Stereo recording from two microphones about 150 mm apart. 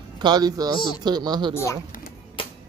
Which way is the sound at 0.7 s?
30° left (ahead or behind).